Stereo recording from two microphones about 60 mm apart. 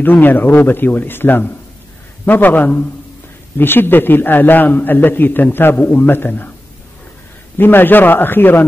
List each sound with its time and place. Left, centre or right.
0.0 s a man's voice: left
7.5 s a man's voice: left